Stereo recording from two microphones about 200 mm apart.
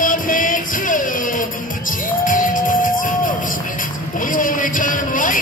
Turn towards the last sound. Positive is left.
turn(degrees=40)  # may be behind; listen again after turning